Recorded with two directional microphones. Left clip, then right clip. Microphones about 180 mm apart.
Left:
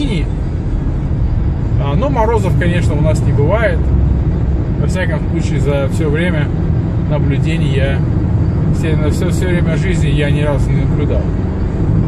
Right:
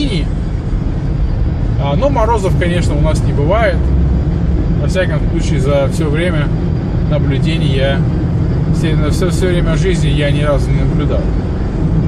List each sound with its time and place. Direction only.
2.6 s speech: 15° left (ahead or behind)
5.7 s speech: 15° left (ahead or behind)
7.4 s speech: 20° left (ahead or behind)
9.4 s speech: 15° left (ahead or behind)